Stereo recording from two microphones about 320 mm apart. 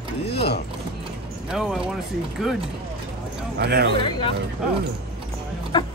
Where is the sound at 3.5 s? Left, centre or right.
Right.